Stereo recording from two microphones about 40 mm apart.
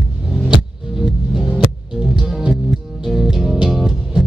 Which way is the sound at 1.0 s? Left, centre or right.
Centre.